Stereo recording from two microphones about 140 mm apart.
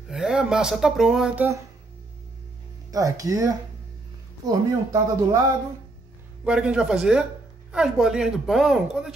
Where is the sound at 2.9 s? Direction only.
25° right (ahead or behind).